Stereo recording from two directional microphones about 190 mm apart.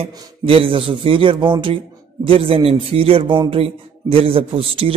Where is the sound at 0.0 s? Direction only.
25° right (ahead or behind).